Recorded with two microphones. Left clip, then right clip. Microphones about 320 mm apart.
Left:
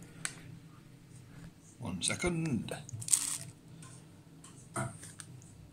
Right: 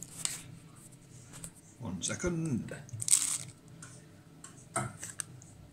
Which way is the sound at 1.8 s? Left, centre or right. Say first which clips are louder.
Left 2 dB; centre.